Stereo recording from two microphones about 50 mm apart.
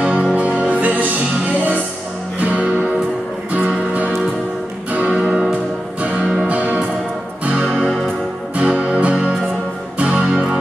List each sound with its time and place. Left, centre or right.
0.0 s music: right
2.3 s music: right
5.1 s music: centre